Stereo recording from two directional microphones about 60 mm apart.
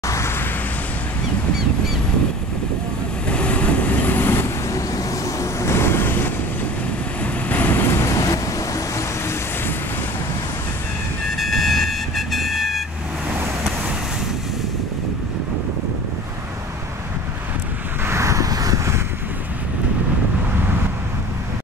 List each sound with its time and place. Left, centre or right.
0.0 s vehicle: left
3.3 s vehicle: left
4.6 s vehicle: left
7.4 s vehicle: left
8.0 s vehicle: left
11.3 s vehicle: centre
18.0 s vehicle: right